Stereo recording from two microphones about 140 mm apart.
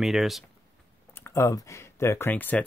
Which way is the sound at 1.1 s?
20° left (ahead or behind).